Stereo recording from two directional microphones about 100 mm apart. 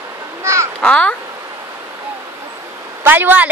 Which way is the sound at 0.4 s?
30° right (ahead or behind).